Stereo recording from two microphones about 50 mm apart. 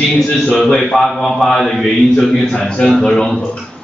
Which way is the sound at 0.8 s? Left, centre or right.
Centre.